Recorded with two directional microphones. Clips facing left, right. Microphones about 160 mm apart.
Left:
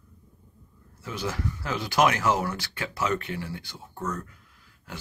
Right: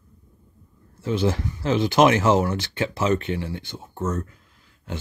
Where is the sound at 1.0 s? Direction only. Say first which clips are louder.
Right 9 dB; 25° right (ahead or behind).